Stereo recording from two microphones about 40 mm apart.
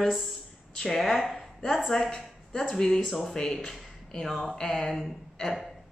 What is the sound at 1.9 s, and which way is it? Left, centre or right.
Speech, centre.